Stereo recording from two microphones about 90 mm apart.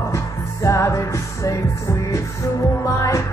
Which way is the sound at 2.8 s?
35° left (ahead or behind).